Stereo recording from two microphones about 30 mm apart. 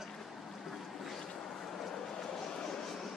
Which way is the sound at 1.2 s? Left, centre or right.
Centre.